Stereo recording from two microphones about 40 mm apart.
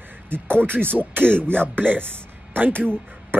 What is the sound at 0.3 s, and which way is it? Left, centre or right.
Speech, right.